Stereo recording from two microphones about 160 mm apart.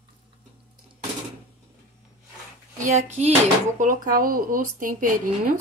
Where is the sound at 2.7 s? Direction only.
50° right (ahead or behind).